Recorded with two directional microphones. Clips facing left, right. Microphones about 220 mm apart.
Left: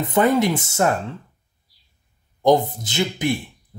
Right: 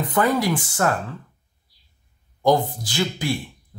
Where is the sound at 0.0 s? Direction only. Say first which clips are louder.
Left 3 dB; 25° left (ahead or behind).